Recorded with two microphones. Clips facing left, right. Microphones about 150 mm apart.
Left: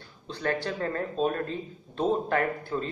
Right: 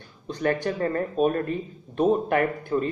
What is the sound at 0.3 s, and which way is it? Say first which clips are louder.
Speech: right 5 dB; 15° right (ahead or behind).